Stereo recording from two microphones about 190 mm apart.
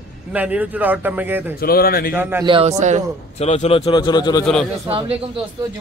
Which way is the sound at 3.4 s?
35° left (ahead or behind).